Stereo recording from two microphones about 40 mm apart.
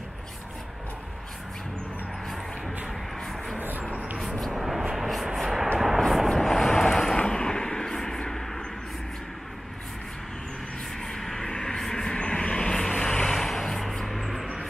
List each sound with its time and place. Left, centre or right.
2.2 s a sound: centre
2.9 s music: centre
3.9 s music: right
4.6 s vehicle: centre
11.0 s vehicle: centre